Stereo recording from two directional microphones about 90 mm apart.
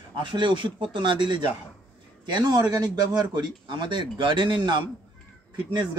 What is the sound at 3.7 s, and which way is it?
A man's voice, 60° right (ahead or behind).